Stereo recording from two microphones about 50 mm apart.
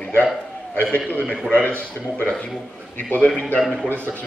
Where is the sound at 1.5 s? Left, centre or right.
Left.